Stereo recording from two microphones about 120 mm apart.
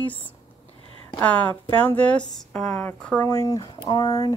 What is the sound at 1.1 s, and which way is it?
A woman's voice, 10° left (ahead or behind).